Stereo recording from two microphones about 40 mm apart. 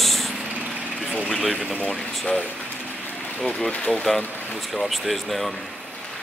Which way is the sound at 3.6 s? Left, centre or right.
Left.